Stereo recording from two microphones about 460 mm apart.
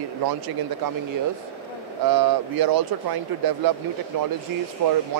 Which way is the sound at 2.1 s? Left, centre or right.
Right.